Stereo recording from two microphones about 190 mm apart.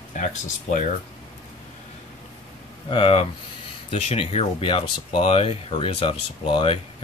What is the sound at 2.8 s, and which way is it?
Speech, 30° left (ahead or behind).